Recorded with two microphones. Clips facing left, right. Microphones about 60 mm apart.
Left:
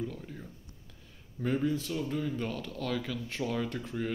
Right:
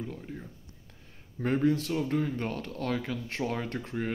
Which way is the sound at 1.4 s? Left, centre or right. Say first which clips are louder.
Right 4 dB; right.